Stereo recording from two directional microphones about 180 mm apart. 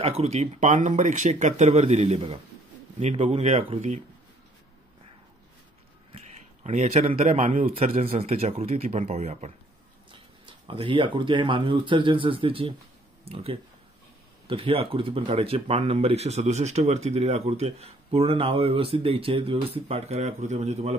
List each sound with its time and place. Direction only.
0.2 s speech: 40° right (ahead or behind)
6.6 s speech: 40° right (ahead or behind)